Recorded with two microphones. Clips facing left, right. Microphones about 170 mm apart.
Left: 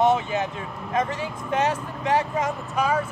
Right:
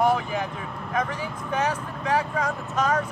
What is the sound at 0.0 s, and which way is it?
Speech, 25° left (ahead or behind).